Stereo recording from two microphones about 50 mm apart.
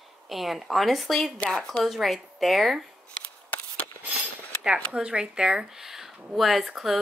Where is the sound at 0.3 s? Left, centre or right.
Centre.